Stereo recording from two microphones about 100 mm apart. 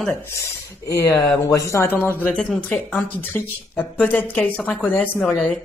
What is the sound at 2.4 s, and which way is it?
Speech, 10° left (ahead or behind).